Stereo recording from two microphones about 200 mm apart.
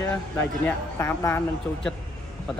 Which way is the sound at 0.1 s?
10° left (ahead or behind).